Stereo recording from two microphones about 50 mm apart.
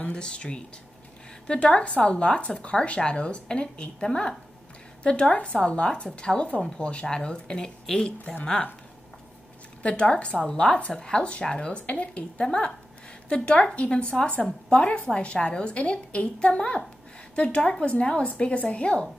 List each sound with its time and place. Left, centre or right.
0.0 s speech: centre
9.8 s speech: left